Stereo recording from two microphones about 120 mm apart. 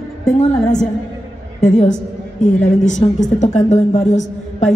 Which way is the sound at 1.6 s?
90° left.